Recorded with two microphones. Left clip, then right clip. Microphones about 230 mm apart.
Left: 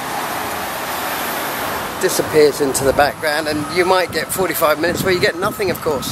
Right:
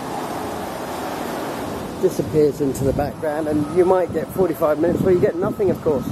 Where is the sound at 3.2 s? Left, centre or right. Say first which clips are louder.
Left 3 dB; centre.